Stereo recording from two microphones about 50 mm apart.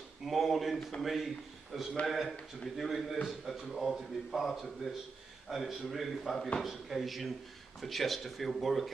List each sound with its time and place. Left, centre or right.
0.2 s a man's voice: centre